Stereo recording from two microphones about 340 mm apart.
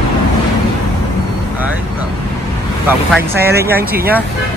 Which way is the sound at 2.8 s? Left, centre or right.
Centre.